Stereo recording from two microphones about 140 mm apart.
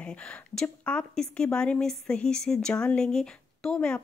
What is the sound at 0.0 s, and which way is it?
Speech, 5° left (ahead or behind).